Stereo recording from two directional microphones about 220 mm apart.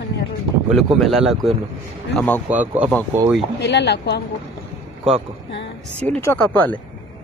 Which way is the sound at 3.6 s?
50° left (ahead or behind).